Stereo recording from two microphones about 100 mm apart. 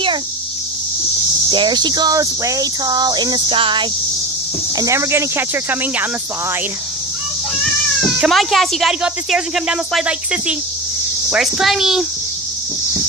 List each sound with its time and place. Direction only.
1.5 s speech: 50° right (ahead or behind)
3.4 s cricket: 60° right (ahead or behind)
4.7 s speech: 30° right (ahead or behind)
8.3 s a child's voice: centre (ahead or behind)